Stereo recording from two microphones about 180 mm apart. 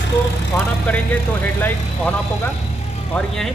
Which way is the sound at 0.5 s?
10° left (ahead or behind).